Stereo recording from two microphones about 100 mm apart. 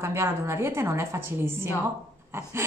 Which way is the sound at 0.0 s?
25° right (ahead or behind).